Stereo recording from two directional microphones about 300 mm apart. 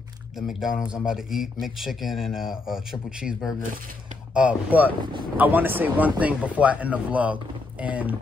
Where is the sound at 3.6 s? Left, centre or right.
Right.